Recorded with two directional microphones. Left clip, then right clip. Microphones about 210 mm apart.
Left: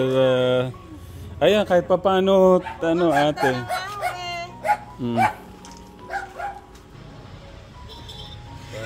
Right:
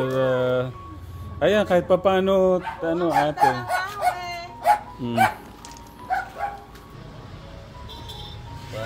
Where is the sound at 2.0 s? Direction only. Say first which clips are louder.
Left 2 dB; 25° left (ahead or behind).